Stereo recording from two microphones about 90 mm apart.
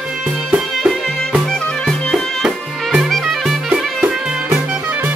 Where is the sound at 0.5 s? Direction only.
10° right (ahead or behind).